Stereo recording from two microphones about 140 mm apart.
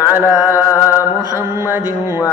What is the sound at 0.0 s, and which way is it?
Music, 15° right (ahead or behind).